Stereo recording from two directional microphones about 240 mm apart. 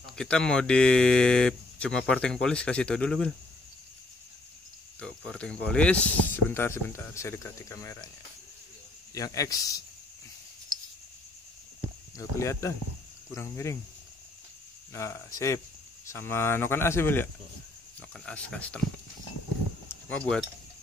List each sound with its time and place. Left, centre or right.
0.1 s speech: centre
5.0 s speech: centre
9.1 s speech: centre
12.2 s speech: centre
14.9 s speech: centre
19.9 s a sound: centre